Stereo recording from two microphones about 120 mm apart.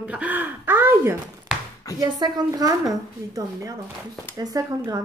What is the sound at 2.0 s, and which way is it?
A woman's voice, 35° right (ahead or behind).